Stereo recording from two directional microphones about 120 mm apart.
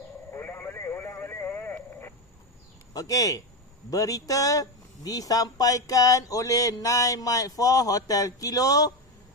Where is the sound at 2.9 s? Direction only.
30° left (ahead or behind).